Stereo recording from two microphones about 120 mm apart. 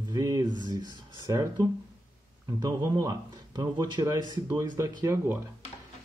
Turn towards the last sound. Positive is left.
turn(degrees=-25)  # may be behind; listen again after turning